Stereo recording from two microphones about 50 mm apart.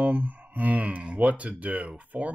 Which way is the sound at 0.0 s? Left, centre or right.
Right.